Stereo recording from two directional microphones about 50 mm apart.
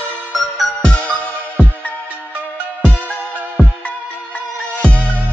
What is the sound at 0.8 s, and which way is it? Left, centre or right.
Music, left.